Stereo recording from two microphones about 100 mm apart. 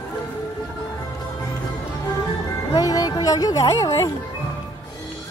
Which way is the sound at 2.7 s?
40° left (ahead or behind).